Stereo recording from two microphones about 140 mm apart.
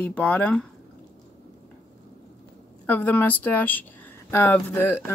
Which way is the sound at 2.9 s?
10° left (ahead or behind).